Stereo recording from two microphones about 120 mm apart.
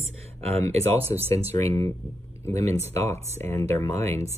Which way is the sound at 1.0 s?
15° right (ahead or behind).